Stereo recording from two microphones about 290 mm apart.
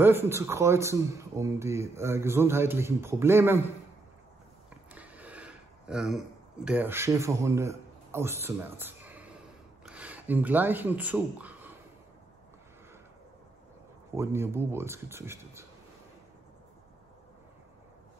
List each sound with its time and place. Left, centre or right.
0.0 s speech: centre
4.6 s a sound: centre
9.8 s speech: centre
14.1 s speech: centre